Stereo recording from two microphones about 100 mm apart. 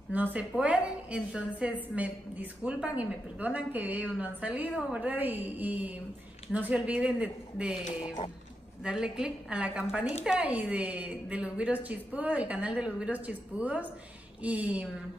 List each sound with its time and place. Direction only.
0.1 s a woman's voice: 15° right (ahead or behind)
8.8 s a woman's voice: 5° right (ahead or behind)